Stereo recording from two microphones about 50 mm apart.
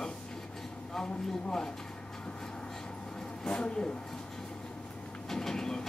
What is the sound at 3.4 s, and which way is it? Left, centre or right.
Speech, centre.